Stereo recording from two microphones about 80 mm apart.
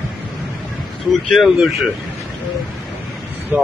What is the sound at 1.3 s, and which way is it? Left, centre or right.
Speech, centre.